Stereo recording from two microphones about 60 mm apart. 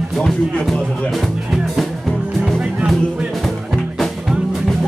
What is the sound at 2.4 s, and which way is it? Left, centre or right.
Music, centre.